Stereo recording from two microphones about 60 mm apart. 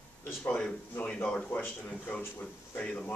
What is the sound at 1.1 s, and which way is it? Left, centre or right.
Speech, centre.